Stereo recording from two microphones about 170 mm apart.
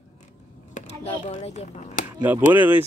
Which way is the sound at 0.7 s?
45° left (ahead or behind).